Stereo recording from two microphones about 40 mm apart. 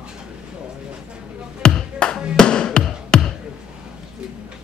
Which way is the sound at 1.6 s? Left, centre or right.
Left.